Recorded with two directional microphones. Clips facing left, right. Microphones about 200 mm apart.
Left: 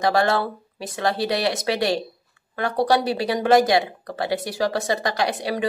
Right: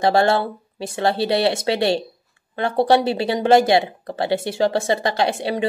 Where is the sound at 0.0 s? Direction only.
30° right (ahead or behind).